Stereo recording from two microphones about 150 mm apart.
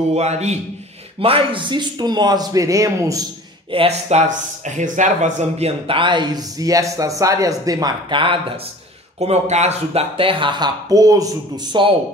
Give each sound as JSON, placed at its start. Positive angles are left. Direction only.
{"t": 0.1, "sound": "a man's voice", "side_deg": -45}
{"t": 1.2, "sound": "a man's voice", "side_deg": -35}
{"t": 3.7, "sound": "speech", "side_deg": -45}
{"t": 9.2, "sound": "speech", "side_deg": -45}